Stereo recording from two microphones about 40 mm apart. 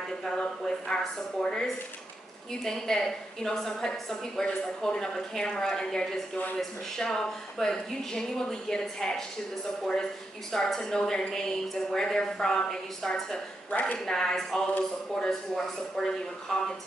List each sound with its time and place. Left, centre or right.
0.2 s a woman's voice: centre
6.3 s speech: left
7.0 s a woman's voice: centre
10.5 s a woman's voice: centre